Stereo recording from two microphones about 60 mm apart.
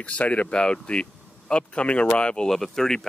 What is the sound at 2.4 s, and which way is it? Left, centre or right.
Speech, centre.